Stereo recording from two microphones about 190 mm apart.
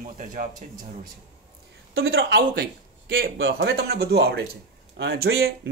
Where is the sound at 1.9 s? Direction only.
90° right.